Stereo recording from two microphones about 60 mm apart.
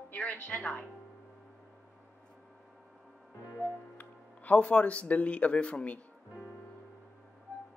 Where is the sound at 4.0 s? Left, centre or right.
Left.